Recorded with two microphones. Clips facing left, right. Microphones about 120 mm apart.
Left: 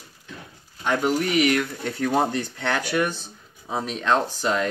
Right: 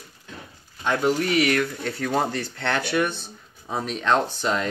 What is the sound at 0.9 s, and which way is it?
Speech, 10° left (ahead or behind).